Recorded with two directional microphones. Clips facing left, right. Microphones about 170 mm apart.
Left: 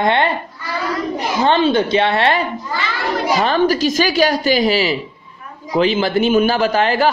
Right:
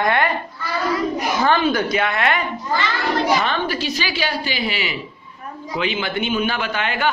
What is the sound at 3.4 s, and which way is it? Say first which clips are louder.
A woman's voice: left 8 dB; 40° left (ahead or behind).